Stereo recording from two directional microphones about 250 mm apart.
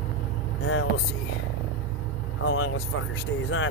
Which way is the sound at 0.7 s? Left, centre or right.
Left.